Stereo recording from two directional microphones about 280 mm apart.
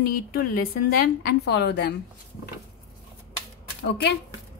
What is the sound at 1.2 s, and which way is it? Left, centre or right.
Speech, left.